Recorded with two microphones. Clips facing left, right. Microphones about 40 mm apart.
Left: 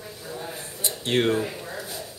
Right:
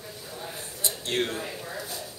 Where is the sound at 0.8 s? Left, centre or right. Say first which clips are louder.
Left 6 dB; left.